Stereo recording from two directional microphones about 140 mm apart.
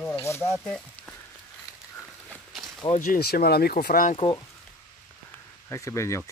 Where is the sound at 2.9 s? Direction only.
75° left (ahead or behind).